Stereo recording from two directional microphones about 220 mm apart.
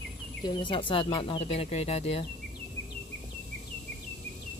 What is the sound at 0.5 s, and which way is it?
Speech, 20° left (ahead or behind).